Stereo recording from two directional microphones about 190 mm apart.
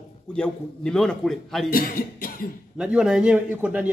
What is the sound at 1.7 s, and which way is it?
Cough, 50° left (ahead or behind).